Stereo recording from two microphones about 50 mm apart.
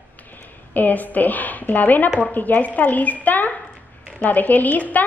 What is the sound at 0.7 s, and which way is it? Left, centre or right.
Speech, left.